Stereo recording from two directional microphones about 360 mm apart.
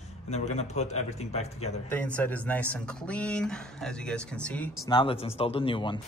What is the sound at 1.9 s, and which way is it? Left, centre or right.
Speech, centre.